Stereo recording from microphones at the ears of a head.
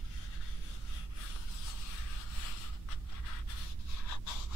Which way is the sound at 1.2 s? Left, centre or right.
Left.